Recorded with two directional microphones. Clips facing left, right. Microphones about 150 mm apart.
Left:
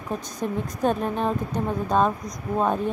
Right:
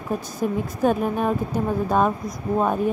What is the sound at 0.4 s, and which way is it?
A woman's voice, 5° right (ahead or behind).